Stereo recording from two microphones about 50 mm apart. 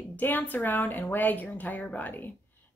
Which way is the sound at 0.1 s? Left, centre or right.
Left.